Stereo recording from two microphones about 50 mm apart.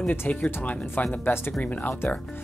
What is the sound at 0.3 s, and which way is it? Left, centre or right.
Speech, left.